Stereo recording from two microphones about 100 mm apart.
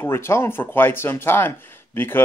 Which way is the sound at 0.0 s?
25° left (ahead or behind).